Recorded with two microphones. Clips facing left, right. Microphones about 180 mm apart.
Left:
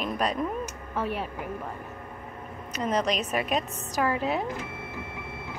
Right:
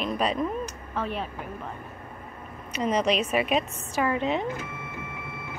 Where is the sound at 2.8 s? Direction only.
10° right (ahead or behind).